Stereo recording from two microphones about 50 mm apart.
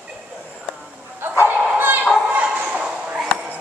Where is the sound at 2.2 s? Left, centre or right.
Right.